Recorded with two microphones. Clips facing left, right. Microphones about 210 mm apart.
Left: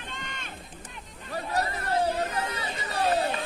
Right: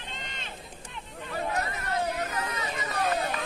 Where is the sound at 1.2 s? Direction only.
35° left (ahead or behind).